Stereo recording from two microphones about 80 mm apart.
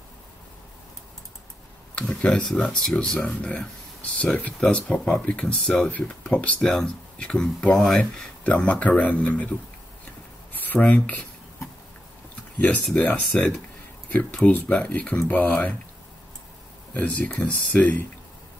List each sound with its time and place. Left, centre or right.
2.0 s speech: centre
5.9 s speech: centre
10.5 s a sound: left
12.5 s speech: centre
16.9 s speech: centre